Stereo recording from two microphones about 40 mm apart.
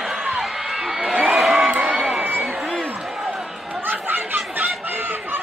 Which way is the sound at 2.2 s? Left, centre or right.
Right.